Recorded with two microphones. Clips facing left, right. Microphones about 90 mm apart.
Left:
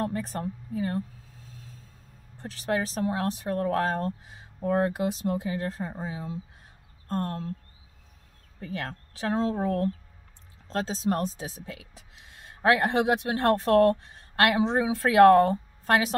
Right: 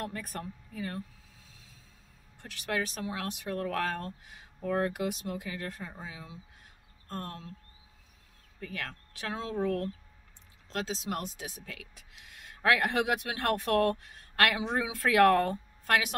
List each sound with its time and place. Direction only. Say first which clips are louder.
0.0 s a sound: left 8 dB; 25° left (ahead or behind)
2.3 s speech: left 5 dB; 35° left (ahead or behind)
8.5 s speech: left 5 dB; 30° left (ahead or behind)